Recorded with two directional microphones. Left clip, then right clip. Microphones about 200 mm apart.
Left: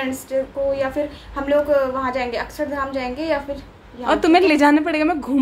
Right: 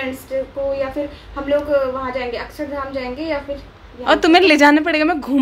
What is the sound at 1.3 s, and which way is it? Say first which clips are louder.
A woman's voice: even; 10° left (ahead or behind).